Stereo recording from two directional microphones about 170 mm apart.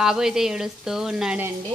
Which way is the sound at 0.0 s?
5° right (ahead or behind).